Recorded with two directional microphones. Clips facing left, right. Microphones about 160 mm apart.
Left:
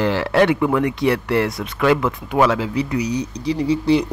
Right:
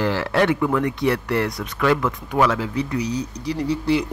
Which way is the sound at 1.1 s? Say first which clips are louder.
Left 3 dB; 90° left.